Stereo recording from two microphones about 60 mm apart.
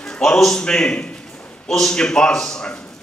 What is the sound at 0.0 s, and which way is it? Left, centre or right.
A man's voice, centre.